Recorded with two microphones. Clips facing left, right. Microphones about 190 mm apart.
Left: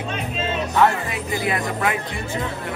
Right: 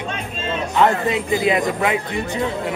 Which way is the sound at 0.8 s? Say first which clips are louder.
Right 3 dB; 20° right (ahead or behind).